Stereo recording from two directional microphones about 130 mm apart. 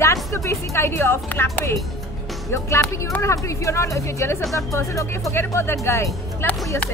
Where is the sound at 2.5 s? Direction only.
20° left (ahead or behind).